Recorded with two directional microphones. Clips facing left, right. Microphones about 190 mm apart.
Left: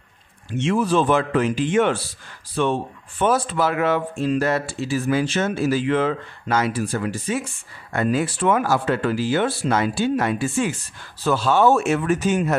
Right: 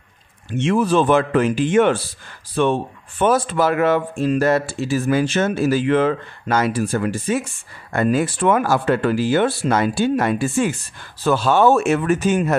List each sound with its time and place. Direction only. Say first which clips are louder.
0.6 s speech: right 3 dB; 55° right (ahead or behind)